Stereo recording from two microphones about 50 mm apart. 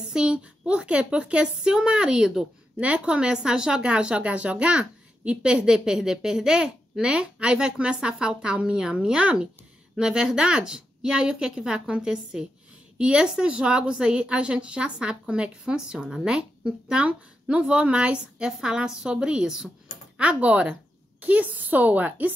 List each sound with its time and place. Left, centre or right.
0.1 s a woman's voice: right
20.2 s a woman's voice: right